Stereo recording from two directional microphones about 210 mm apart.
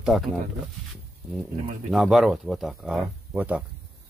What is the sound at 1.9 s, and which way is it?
Speech, centre (ahead or behind).